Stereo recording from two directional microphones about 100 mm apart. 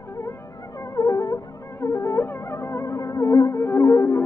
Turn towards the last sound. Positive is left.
turn(degrees=30)  # may be behind; listen again after turning